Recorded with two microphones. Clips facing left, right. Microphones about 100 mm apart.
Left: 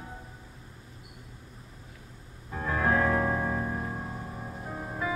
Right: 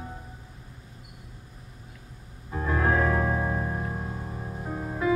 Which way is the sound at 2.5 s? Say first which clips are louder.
Right 2 dB; 5° right (ahead or behind).